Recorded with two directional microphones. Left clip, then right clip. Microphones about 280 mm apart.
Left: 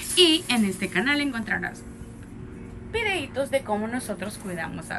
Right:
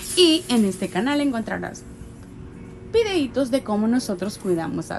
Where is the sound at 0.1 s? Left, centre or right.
Centre.